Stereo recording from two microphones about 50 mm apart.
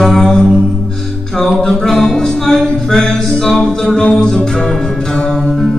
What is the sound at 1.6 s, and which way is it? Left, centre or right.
Music, centre.